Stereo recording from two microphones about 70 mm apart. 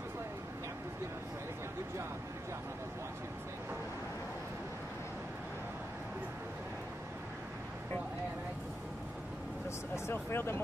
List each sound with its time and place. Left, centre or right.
9.9 s speech: left